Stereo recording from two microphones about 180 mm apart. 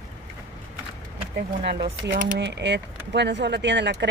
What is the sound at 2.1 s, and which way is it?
Speech, 45° right (ahead or behind).